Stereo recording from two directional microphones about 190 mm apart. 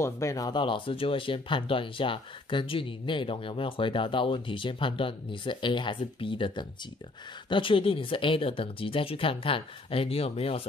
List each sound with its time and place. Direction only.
0.0 s speech: 15° left (ahead or behind)